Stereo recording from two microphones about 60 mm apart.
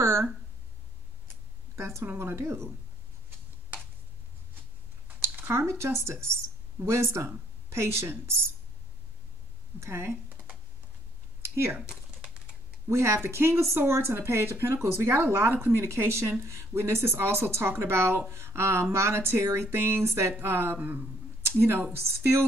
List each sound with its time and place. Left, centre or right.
0.0 s a sound: right
1.8 s speech: right
5.5 s speech: right
9.8 s speech: right
11.4 s speech: right
12.8 s speech: right
21.4 s speech: right